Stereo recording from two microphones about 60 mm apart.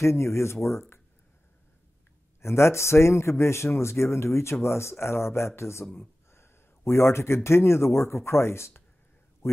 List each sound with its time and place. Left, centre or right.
0.0 s speech: left
2.4 s speech: left
9.4 s a sound: left